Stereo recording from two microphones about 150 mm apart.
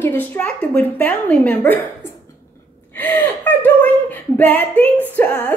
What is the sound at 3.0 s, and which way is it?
A woman's voice, 10° left (ahead or behind).